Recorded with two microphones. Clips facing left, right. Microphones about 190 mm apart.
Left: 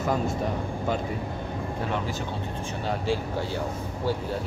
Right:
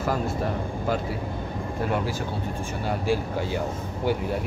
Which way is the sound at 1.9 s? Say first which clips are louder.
Right 5 dB; 10° right (ahead or behind).